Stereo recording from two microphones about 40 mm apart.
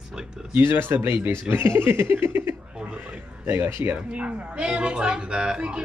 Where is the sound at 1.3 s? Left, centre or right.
Right.